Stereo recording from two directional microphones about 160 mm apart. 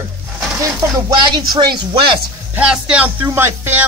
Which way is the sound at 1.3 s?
30° right (ahead or behind).